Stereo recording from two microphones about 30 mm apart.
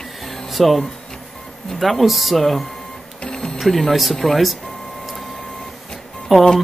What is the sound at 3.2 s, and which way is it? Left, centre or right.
Music, left.